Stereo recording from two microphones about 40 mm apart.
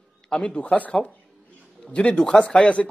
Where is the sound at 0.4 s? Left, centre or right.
Left.